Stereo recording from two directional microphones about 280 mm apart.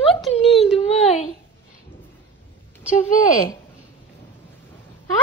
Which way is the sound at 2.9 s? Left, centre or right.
Left.